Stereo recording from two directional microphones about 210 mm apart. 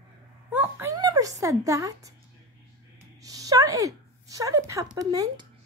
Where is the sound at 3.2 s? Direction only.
15° right (ahead or behind).